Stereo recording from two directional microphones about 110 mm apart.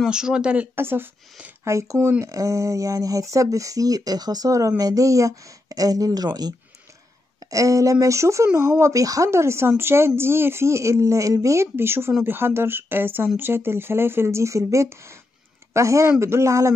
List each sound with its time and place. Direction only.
0.1 s speech: 10° right (ahead or behind); by 6.5 s 35° right (ahead or behind)
7.5 s speech: 30° right (ahead or behind)